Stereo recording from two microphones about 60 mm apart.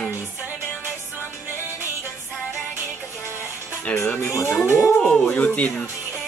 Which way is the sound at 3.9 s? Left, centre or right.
Centre.